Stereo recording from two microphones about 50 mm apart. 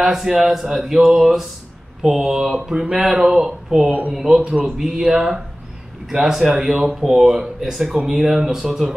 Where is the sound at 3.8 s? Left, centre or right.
Right.